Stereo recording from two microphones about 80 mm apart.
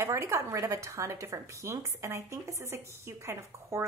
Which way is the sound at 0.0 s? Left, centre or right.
Right.